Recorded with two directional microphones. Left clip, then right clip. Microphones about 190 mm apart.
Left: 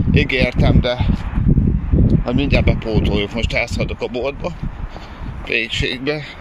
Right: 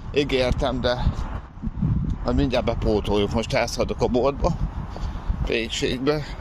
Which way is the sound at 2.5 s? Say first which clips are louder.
Left 3 dB; 10° right (ahead or behind).